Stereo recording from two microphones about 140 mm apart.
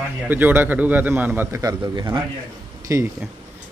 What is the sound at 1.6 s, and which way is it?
Speech, 30° right (ahead or behind).